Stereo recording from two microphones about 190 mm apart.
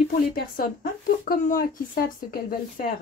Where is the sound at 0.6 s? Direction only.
50° left (ahead or behind).